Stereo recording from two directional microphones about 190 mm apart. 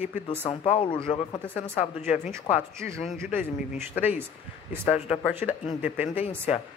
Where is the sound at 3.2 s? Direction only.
10° right (ahead or behind).